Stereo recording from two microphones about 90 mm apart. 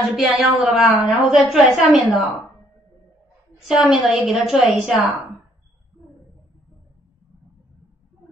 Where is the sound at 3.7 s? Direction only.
5° right (ahead or behind).